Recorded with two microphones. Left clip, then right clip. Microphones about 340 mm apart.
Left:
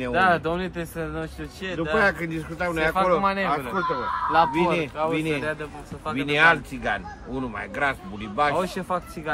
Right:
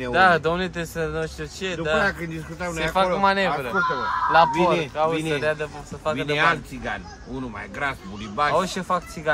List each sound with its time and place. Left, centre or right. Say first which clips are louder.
0.1 s a man's voice: right 4 dB; right
2.0 s speech: left 2 dB; centre
3.2 s a man's voice: right 3 dB; right
6.1 s speech: left 3 dB; centre
8.5 s a man's voice: right 3 dB; right